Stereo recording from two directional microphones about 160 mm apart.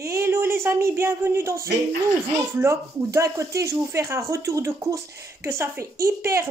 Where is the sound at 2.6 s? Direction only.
20° right (ahead or behind).